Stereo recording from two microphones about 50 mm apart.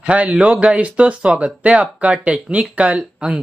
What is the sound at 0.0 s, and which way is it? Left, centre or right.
Speech, right.